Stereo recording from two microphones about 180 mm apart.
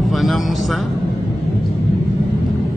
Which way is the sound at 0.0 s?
Centre (ahead or behind).